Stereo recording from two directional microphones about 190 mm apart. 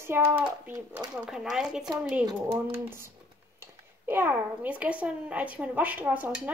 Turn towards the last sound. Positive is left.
turn(degrees=-10)  # may be behind; listen again after turning